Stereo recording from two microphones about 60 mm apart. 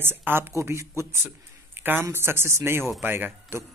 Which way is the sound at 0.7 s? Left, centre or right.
Right.